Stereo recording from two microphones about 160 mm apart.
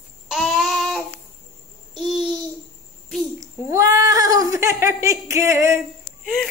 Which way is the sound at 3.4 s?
20° right (ahead or behind).